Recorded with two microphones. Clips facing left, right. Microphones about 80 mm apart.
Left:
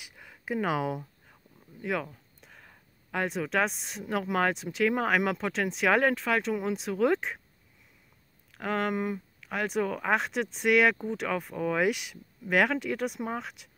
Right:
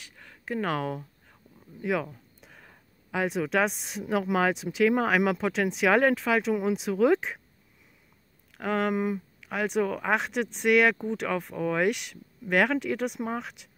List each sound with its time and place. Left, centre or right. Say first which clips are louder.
0.0 s speech: even; centre
8.5 s speech: right 3 dB; centre